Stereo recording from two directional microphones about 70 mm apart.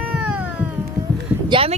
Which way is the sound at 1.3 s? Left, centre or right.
Centre.